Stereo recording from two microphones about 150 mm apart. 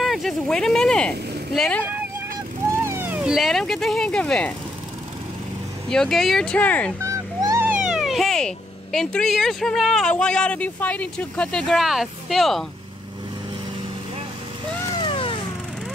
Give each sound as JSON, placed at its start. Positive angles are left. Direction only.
{"t": 0.0, "sound": "speech", "side_deg": 0}
{"t": 2.7, "sound": "speech", "side_deg": -15}
{"t": 5.9, "sound": "speech", "side_deg": 5}
{"t": 7.0, "sound": "a sound", "side_deg": -20}
{"t": 7.8, "sound": "speech", "side_deg": -5}
{"t": 15.0, "sound": "vehicle", "side_deg": 35}